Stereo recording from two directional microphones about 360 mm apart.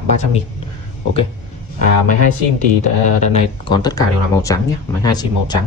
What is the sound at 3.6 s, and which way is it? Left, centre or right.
Speech, centre.